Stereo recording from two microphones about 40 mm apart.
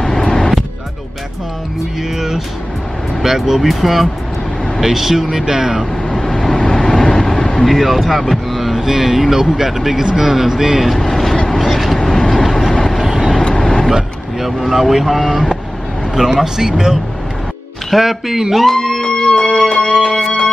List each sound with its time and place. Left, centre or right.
0.0 s vehicle: centre
2.1 s music: centre
3.2 s a man's voice: centre
6.0 s vehicle: centre
10.0 s a man's voice: centre
10.9 s speech: centre
11.4 s vehicle: centre
12.9 s vehicle: centre
13.4 s vehicle: left
14.4 s speech: centre
16.2 s a man's voice: centre
18.6 s music: centre
20.1 s music: centre